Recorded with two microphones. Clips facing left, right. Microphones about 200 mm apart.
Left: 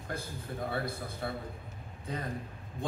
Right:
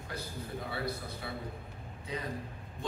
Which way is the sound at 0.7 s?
50° left (ahead or behind).